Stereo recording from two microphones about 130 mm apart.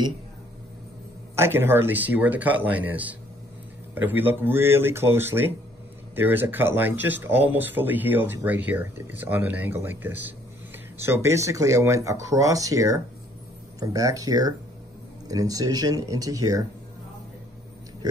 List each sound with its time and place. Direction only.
1.3 s speech: 20° right (ahead or behind)